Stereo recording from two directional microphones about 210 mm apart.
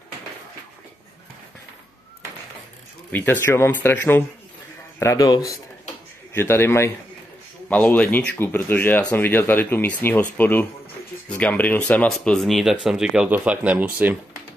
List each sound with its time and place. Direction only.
3.1 s speech: 10° left (ahead or behind); by 14.1 s 10° right (ahead or behind)